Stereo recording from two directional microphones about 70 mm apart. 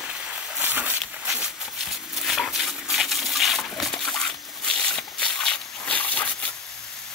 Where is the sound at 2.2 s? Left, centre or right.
Centre.